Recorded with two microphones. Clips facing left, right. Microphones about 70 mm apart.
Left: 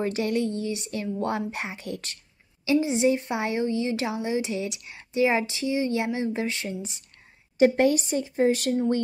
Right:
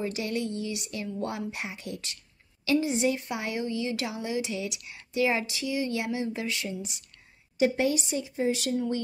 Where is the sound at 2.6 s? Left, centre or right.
Left.